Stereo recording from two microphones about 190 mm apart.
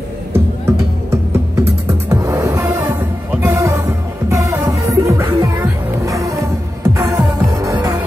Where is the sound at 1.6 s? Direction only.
15° right (ahead or behind).